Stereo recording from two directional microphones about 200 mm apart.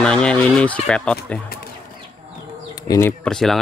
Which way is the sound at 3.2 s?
Centre (ahead or behind).